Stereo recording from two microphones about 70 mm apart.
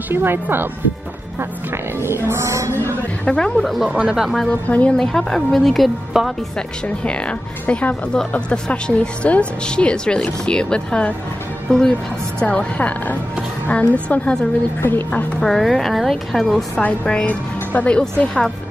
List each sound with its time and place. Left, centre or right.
0.1 s speech: right
2.0 s speech: right
3.3 s a woman's voice: centre
3.6 s a woman's voice: centre
3.9 s speech: centre
4.5 s speech: centre
4.9 s a woman's voice: centre
7.0 s a woman's voice: centre
14.8 s speech: left
15.4 s a woman's voice: centre
16.8 s a woman's voice: centre